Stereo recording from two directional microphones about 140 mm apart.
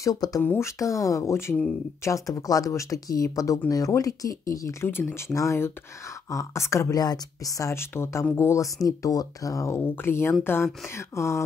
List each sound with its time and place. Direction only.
0.0 s speech: 25° left (ahead or behind)